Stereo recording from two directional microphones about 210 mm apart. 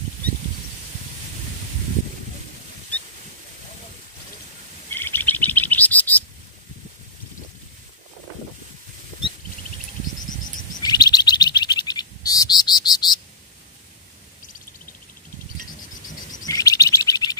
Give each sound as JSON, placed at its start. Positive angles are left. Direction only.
{"t": 4.9, "sound": "bird", "side_deg": 10}
{"t": 10.8, "sound": "bird", "side_deg": 20}
{"t": 16.4, "sound": "chirp", "side_deg": 15}